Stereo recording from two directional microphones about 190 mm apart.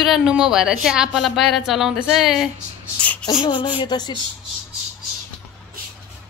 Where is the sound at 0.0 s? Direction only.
5° right (ahead or behind).